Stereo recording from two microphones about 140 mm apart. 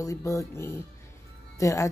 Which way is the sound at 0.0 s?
25° left (ahead or behind).